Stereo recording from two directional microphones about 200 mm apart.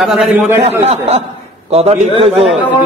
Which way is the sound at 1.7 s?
30° right (ahead or behind).